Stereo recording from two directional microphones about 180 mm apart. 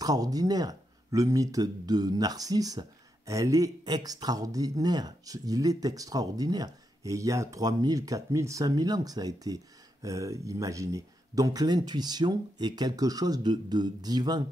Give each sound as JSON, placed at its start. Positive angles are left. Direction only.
{"t": 0.0, "sound": "speech", "side_deg": -20}